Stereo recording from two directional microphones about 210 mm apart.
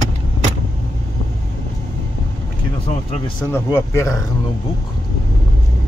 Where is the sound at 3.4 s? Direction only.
10° left (ahead or behind).